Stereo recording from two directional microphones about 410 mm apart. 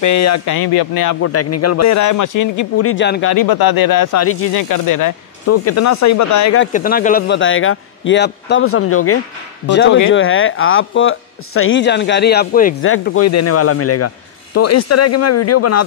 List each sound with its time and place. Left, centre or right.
0.0 s speech: left
0.7 s speech: left
1.2 s a man's voice: left
2.9 s speech: left
3.3 s speech: left
4.6 s a man's voice: left
6.6 s a man's voice: left